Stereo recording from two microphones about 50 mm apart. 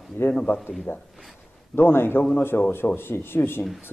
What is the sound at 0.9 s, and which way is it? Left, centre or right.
Speech, left.